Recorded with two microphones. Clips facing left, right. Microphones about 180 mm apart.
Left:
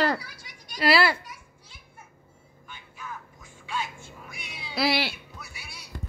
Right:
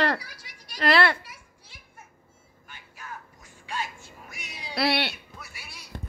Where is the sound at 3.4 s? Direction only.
40° right (ahead or behind).